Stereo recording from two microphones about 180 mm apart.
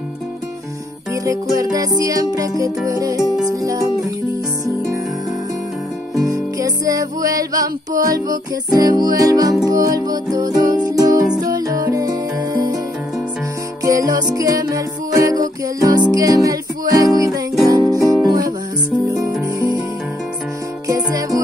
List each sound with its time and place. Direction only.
1.1 s music: 20° right (ahead or behind)
6.3 s music: 20° right (ahead or behind)
13.8 s music: 20° right (ahead or behind)
18.9 s music: centre (ahead or behind)
20.8 s music: 20° right (ahead or behind)